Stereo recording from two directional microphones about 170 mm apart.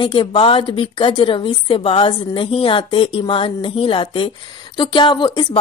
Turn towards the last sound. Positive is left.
turn(degrees=30)  # may be behind; listen again after turning